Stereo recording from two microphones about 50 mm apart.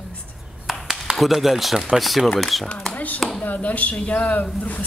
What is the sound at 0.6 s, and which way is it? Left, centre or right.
Speech, centre.